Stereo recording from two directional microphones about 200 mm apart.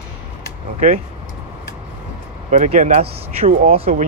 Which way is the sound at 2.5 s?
40° right (ahead or behind).